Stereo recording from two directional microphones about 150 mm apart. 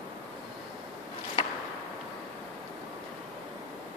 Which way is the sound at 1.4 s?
30° left (ahead or behind).